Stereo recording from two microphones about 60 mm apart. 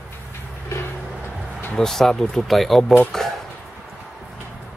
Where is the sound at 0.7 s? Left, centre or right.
Left.